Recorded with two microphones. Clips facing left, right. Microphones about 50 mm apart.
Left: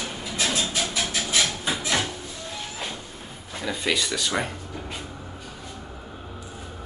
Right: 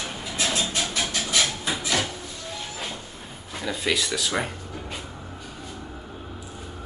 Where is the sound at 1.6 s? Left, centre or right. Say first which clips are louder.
Left 1 dB; centre.